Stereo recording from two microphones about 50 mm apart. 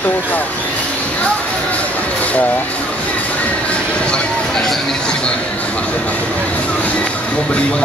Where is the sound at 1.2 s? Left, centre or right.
Left.